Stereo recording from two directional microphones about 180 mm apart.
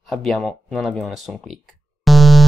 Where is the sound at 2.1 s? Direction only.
Centre (ahead or behind).